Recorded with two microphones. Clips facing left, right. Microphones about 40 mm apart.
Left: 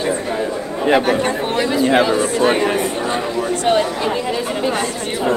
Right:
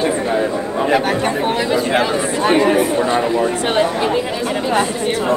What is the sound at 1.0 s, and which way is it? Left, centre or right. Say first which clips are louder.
Speech: even; centre.